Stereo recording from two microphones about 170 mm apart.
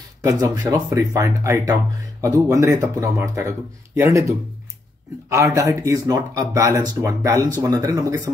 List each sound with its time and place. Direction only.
0.2 s speech: 20° right (ahead or behind)